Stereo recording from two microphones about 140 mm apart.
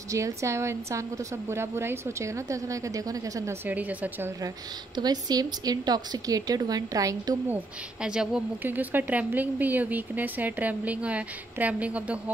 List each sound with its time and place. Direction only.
0.1 s a woman's voice: 20° right (ahead or behind)
3.6 s speech: 10° right (ahead or behind)
4.9 s a woman's voice: 30° right (ahead or behind)
7.4 s speech: 10° right (ahead or behind)